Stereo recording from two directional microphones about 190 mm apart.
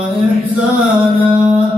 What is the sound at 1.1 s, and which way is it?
Music, 25° right (ahead or behind).